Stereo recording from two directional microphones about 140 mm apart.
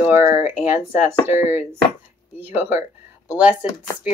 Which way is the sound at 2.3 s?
15° right (ahead or behind).